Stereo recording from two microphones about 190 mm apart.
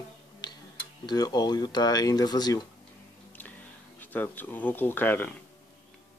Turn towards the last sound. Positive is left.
turn(degrees=10)  # may be behind; listen again after turning